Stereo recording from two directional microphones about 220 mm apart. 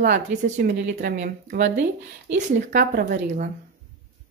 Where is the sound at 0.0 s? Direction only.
40° right (ahead or behind).